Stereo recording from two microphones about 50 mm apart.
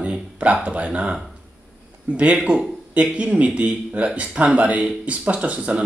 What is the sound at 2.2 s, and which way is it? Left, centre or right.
Speech, right.